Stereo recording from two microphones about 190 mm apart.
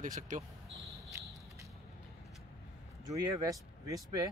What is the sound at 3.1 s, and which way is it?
Speech, 15° right (ahead or behind).